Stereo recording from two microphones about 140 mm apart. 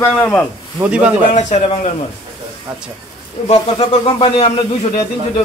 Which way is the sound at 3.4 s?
35° left (ahead or behind).